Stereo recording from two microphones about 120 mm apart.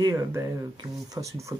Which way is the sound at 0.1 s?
25° right (ahead or behind).